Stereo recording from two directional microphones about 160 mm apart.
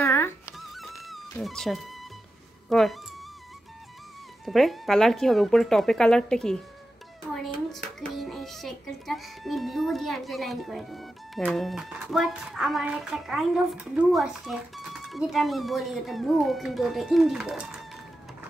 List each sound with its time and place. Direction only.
0.0 s music: 15° left (ahead or behind)
0.6 s music: centre (ahead or behind)
2.7 s a child's voice: centre (ahead or behind)
4.5 s a child's voice: centre (ahead or behind)